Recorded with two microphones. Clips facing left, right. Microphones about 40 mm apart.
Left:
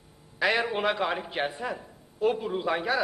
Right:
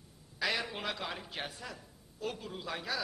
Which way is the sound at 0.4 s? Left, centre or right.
Left.